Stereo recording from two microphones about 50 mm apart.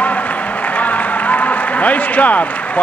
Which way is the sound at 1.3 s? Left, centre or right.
Left.